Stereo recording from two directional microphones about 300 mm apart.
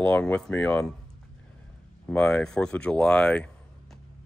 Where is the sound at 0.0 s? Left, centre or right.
Centre.